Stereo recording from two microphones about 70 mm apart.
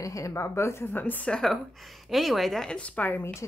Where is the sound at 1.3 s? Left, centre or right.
Centre.